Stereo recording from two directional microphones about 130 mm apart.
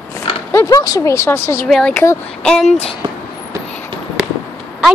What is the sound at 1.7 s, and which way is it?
A woman's voice, 5° left (ahead or behind).